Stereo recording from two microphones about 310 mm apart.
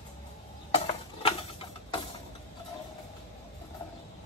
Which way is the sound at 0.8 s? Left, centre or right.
Centre.